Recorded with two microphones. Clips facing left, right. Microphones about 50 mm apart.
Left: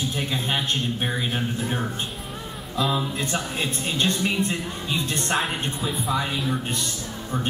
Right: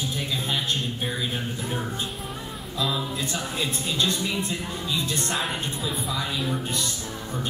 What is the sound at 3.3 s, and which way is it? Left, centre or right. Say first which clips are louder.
A man's voice: left 2 dB; left.